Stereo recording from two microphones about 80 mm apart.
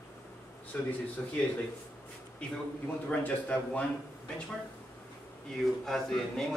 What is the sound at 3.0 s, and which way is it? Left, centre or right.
Speech, centre.